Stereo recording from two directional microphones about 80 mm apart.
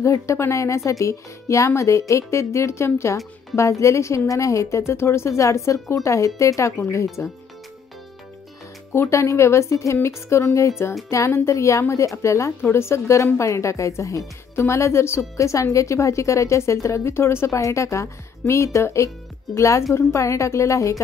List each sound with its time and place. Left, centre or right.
0.0 s a woman's voice: left
8.9 s a woman's voice: left